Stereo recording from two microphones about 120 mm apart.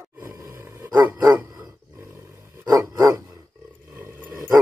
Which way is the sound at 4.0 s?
15° right (ahead or behind).